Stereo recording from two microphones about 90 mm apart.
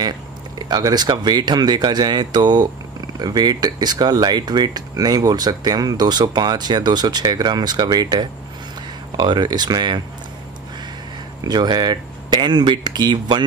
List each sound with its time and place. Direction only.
0.6 s speech: 45° right (ahead or behind)
11.4 s speech: 50° right (ahead or behind)